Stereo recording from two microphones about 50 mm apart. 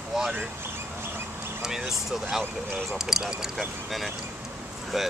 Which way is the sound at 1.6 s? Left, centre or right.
Centre.